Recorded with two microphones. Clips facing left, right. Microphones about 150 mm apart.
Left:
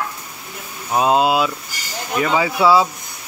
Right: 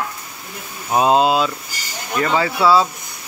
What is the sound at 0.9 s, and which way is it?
Speech, centre (ahead or behind).